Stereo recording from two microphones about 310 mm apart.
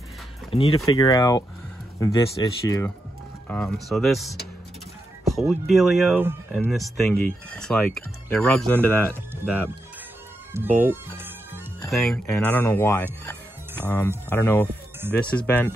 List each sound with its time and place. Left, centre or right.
0.5 s speech: centre
10.8 s speech: centre